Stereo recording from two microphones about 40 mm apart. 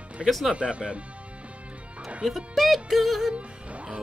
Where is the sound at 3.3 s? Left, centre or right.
Right.